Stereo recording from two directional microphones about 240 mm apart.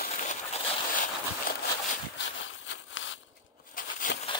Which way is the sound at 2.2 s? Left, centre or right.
Left.